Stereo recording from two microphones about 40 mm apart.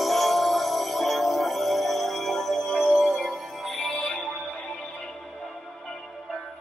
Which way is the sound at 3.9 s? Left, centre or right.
Left.